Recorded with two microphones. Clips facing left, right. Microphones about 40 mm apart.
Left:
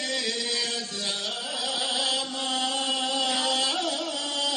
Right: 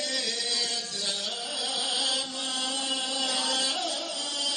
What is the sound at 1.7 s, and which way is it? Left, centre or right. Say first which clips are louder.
Chant: left 2 dB; left.